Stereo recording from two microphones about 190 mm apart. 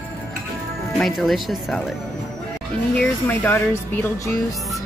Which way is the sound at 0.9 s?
Centre (ahead or behind).